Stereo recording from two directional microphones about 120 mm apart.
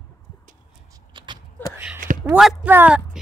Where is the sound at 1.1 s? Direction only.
40° right (ahead or behind).